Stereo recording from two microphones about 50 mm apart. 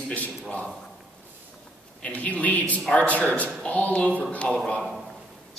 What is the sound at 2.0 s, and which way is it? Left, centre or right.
A man's voice, left.